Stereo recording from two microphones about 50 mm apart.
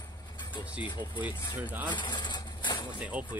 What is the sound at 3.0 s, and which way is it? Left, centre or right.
Speech, right.